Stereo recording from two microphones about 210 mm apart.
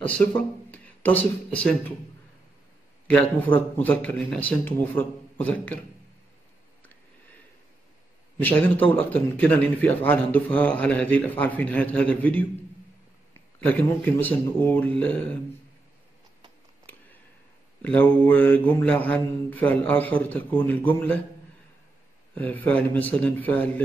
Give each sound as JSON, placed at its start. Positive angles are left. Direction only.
{"t": 0.4, "sound": "speech", "side_deg": 5}
{"t": 3.1, "sound": "a man's voice", "side_deg": 5}
{"t": 8.4, "sound": "a man's voice", "side_deg": 10}
{"t": 17.8, "sound": "a man's voice", "side_deg": 5}
{"t": 22.3, "sound": "a man's voice", "side_deg": 10}